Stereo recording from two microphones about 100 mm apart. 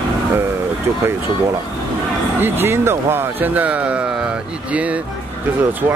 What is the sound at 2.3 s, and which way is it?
Speech, 20° right (ahead or behind).